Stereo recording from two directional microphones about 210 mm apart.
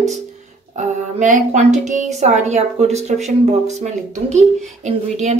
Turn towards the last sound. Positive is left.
turn(degrees=-35)  # may be behind; listen again after turning